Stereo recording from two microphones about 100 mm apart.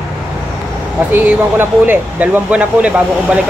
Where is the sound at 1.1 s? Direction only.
20° right (ahead or behind).